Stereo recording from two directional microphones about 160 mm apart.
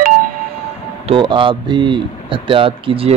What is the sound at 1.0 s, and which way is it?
Speech, 30° right (ahead or behind).